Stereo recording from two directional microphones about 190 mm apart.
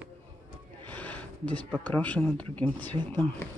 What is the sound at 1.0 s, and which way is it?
Speech, 10° left (ahead or behind).